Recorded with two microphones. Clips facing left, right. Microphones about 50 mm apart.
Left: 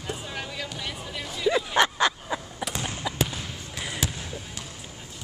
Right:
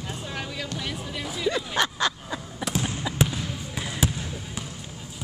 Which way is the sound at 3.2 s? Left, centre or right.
Centre.